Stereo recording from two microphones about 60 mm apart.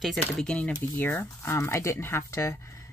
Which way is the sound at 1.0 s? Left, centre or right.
Left.